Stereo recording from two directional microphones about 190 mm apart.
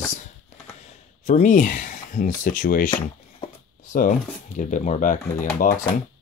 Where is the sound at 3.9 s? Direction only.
45° left (ahead or behind).